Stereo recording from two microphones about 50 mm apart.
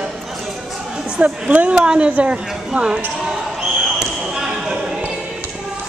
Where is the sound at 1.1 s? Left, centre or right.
Right.